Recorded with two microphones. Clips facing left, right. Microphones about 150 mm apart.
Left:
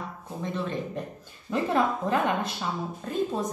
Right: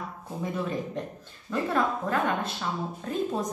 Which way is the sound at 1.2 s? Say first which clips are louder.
Left 3 dB; 20° left (ahead or behind).